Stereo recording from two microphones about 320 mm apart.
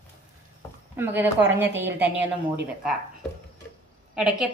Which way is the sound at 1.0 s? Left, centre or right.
Centre.